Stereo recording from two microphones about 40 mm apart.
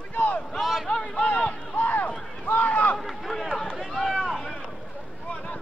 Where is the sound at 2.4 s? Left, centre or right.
Left.